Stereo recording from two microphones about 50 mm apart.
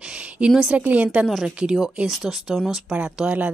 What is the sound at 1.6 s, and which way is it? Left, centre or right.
A woman's voice, centre.